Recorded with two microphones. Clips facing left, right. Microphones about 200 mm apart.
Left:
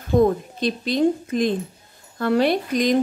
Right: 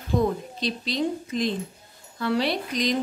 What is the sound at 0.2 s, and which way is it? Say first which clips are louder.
A woman's voice: left 9 dB; 50° left (ahead or behind).